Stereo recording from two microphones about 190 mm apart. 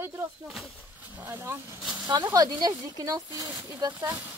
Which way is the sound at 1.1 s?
10° right (ahead or behind).